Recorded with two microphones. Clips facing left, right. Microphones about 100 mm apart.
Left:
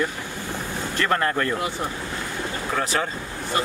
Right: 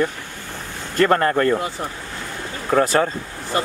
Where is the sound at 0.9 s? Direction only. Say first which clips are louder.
Right 7 dB; 40° right (ahead or behind).